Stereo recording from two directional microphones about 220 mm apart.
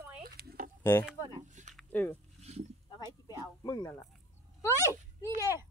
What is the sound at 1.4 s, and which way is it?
Speech, 35° right (ahead or behind).